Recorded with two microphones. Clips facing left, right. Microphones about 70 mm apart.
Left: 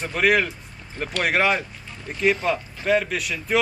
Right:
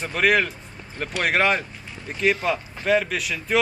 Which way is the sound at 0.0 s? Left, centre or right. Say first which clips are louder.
Even; centre.